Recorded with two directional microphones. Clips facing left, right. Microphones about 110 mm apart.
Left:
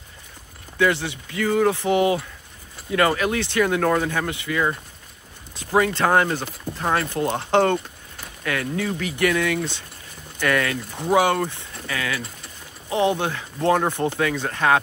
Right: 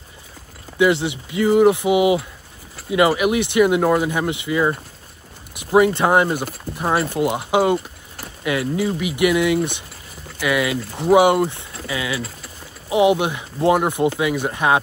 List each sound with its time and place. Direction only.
0.7 s speech: 20° right (ahead or behind)